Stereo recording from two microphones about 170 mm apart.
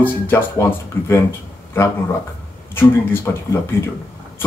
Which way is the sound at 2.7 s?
15° left (ahead or behind).